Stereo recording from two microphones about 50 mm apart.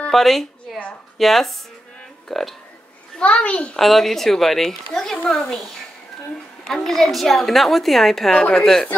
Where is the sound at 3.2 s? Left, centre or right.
Left.